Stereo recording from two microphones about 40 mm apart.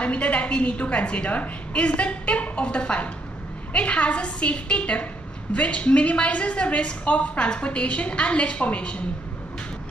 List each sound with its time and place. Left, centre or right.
0.0 s a woman's voice: left